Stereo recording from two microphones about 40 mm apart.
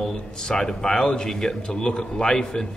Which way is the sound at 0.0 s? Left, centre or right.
Centre.